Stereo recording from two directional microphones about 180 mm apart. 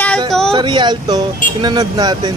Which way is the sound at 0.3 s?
5° left (ahead or behind).